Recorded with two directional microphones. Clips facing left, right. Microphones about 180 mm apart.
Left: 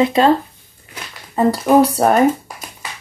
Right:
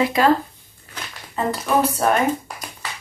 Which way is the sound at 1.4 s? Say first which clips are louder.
Left 8 dB; 35° left (ahead or behind).